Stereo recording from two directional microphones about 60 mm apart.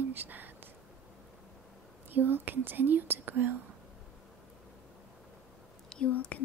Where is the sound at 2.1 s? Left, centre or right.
Right.